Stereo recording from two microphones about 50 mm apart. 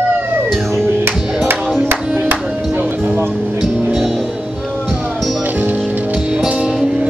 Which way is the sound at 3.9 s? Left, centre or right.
Centre.